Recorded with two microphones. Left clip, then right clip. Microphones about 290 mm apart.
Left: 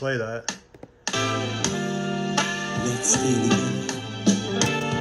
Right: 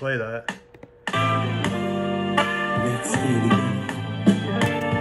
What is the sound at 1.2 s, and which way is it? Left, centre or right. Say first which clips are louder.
Music: right 3 dB; right.